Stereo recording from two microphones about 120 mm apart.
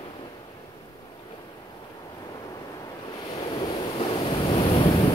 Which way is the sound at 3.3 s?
45° left (ahead or behind).